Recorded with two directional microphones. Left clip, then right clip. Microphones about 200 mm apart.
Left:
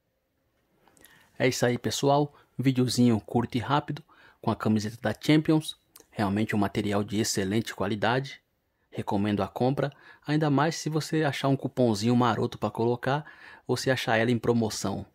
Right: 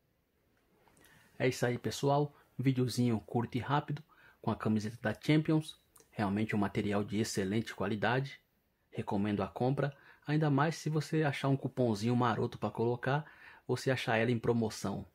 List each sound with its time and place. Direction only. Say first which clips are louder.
0.9 s speech: left 8 dB; 35° left (ahead or behind)